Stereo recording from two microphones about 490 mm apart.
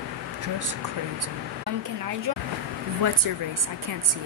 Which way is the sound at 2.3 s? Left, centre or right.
Right.